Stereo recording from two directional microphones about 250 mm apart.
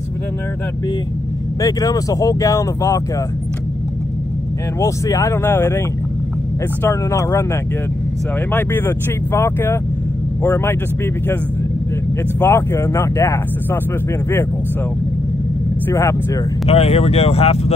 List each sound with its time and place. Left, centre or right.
1.6 s speech: centre
4.7 s speech: centre
8.5 s speech: centre
12.4 s speech: centre
15.9 s speech: centre
16.6 s speech: left